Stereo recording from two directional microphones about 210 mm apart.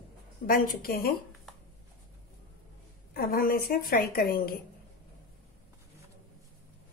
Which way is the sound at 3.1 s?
45° left (ahead or behind).